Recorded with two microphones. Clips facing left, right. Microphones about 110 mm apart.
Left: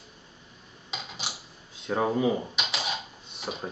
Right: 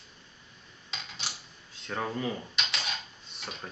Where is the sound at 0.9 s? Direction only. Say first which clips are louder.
Left 4 dB; 5° left (ahead or behind).